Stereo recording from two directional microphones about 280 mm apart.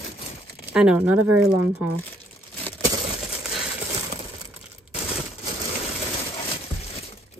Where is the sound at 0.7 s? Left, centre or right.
Centre.